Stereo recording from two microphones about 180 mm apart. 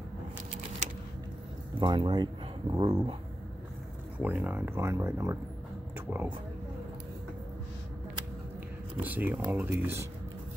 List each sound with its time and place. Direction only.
1.8 s speech: 25° right (ahead or behind)
4.2 s speech: 10° right (ahead or behind)
9.0 s speech: 10° right (ahead or behind)